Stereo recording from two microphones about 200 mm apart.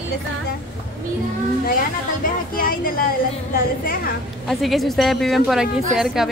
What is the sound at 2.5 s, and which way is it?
Speech, 45° left (ahead or behind).